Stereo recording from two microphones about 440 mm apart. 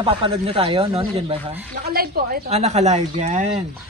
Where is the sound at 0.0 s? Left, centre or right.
Centre.